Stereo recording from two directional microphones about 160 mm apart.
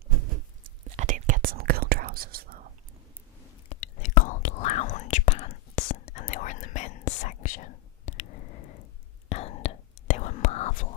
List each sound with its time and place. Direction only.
0.9 s whispering: 55° right (ahead or behind)
3.6 s whispering: 50° left (ahead or behind)